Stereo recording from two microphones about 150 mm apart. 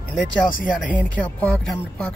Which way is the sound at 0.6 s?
5° left (ahead or behind).